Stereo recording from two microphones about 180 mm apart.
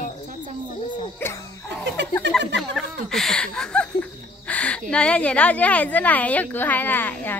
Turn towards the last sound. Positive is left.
turn(degrees=10)  # may be behind; listen again after turning